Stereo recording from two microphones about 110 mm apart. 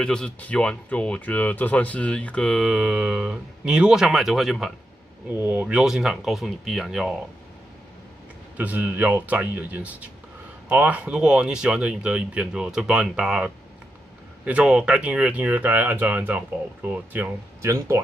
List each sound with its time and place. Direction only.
0.0 s speech: 10° left (ahead or behind)
5.4 s speech: 15° right (ahead or behind)
8.5 s speech: 15° right (ahead or behind)
17.6 s speech: 25° right (ahead or behind)